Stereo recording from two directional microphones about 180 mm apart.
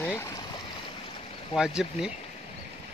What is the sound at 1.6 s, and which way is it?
Speech, 5° right (ahead or behind).